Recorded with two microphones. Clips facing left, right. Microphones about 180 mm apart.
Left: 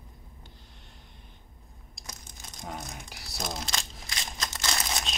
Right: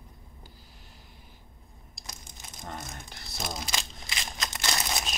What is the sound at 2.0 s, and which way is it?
Crushing, centre (ahead or behind).